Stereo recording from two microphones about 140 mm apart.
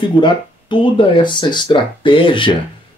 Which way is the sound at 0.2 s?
35° left (ahead or behind).